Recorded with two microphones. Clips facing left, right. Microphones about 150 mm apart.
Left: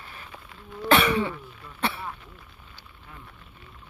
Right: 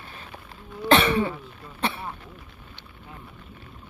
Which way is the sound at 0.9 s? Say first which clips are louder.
Right 2 dB; 25° right (ahead or behind).